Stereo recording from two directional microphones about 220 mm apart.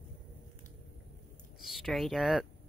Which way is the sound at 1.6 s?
Centre (ahead or behind).